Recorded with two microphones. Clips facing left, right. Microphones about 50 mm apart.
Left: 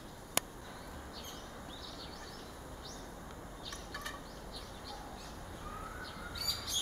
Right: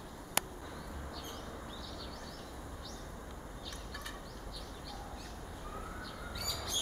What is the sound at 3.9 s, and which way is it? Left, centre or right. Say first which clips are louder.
Bird: left 3 dB; centre.